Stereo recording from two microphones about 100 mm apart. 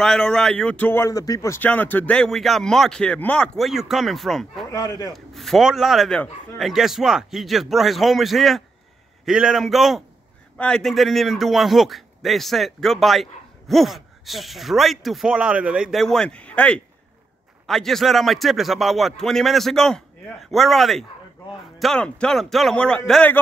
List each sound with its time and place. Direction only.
0.0 s speech: 5° left (ahead or behind); by 1.1 s 20° left (ahead or behind)
1.1 s speech: 35° left (ahead or behind)
1.6 s speech: 20° left (ahead or behind)
3.5 s a man's voice: centre (ahead or behind)
4.6 s speech: 35° left (ahead or behind)
5.1 s a man's voice: centre (ahead or behind)
16.0 s a man's voice: 5° left (ahead or behind)